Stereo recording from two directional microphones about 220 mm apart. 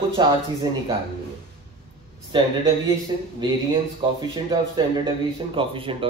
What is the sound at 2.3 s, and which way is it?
Speech, 20° right (ahead or behind).